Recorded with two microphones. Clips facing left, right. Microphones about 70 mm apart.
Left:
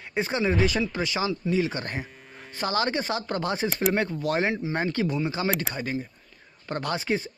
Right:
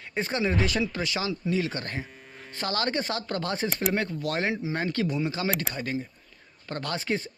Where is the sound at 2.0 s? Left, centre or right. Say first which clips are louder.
Left 1 dB; centre.